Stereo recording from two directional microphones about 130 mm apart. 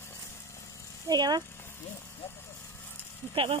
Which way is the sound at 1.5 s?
20° left (ahead or behind).